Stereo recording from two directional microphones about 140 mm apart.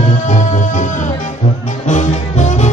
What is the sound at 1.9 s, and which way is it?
Music, 55° left (ahead or behind).